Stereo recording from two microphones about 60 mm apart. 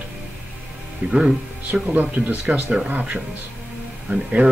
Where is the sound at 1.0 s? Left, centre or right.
Right.